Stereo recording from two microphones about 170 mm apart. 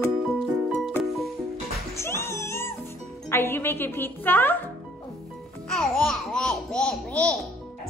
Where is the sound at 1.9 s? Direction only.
15° left (ahead or behind).